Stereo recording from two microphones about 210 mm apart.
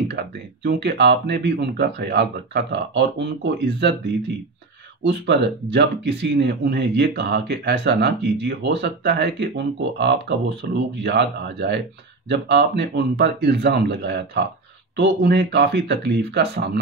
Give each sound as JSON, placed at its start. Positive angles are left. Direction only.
{"t": 0.7, "sound": "speech", "side_deg": -55}
{"t": 5.0, "sound": "speech", "side_deg": -55}